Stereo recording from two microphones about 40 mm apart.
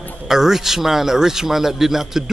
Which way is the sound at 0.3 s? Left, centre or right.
Centre.